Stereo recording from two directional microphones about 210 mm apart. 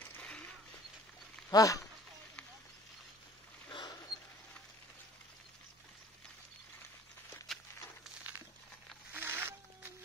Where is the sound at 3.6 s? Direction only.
20° left (ahead or behind).